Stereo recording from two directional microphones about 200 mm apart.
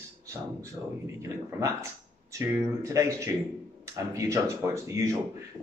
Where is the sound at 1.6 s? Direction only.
15° right (ahead or behind).